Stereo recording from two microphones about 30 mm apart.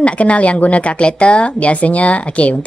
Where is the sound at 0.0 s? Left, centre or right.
Left.